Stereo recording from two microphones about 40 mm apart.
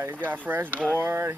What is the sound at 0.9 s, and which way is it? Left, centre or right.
Speech, right.